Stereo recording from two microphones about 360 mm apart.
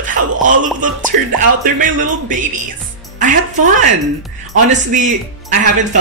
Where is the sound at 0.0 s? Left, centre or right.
Right.